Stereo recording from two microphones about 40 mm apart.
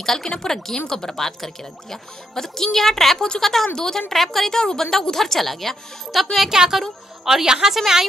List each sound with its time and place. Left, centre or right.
0.0 s speech: centre
6.5 s speech: centre